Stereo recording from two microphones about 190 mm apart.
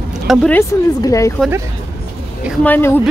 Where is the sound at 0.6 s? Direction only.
15° left (ahead or behind).